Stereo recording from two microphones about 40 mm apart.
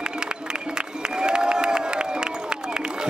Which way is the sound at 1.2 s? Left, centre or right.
Right.